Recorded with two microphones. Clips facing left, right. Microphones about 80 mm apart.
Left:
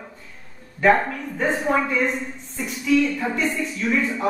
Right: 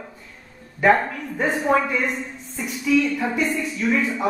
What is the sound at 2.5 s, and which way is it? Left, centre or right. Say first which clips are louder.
A woman's voice: even; centre.